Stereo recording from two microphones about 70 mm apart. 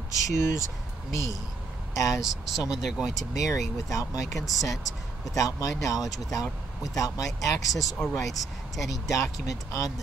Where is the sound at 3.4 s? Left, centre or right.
Left.